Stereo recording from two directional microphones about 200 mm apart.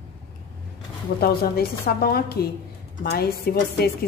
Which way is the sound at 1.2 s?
50° left (ahead or behind).